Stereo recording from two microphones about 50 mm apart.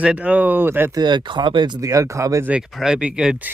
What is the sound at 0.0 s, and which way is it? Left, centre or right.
Speech, right.